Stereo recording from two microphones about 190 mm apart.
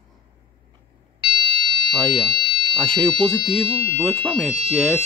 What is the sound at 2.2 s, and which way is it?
Fire alarm, 25° right (ahead or behind).